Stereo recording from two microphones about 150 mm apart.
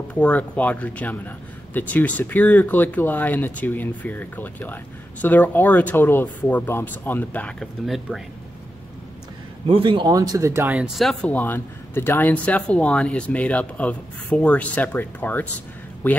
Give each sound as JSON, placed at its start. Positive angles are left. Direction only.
{"t": 0.1, "sound": "speech", "side_deg": 10}
{"t": 7.8, "sound": "speech", "side_deg": 0}
{"t": 9.7, "sound": "speech", "side_deg": -35}
{"t": 10.7, "sound": "speech", "side_deg": -5}